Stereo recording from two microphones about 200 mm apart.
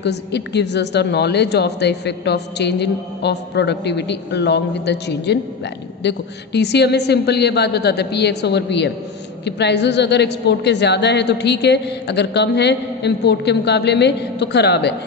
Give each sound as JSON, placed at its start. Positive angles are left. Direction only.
{"t": 0.0, "sound": "a woman's voice", "side_deg": 60}